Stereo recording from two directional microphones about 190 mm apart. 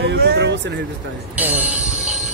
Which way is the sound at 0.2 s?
55° right (ahead or behind).